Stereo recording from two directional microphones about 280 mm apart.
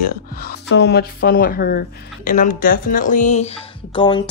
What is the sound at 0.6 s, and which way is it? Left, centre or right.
Speech, left.